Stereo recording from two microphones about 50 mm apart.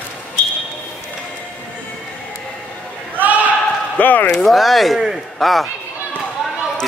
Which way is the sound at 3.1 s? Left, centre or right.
Right.